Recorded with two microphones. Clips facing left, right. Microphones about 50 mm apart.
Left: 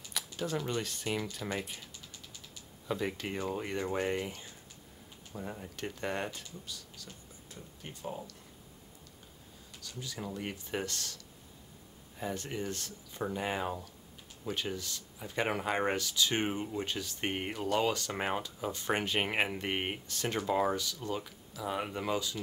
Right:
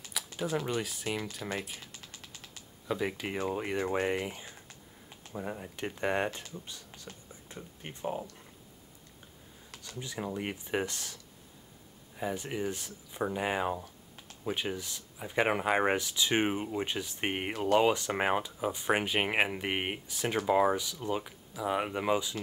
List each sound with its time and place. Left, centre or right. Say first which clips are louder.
0.4 s speech: right 2 dB; centre
2.9 s speech: right 2 dB; centre; by 8.4 s right
9.9 s speech: right 4 dB; right
12.2 s speech: right 3 dB; centre
17.6 s speech: right 6 dB; centre
17.8 s speech: right 5 dB; centre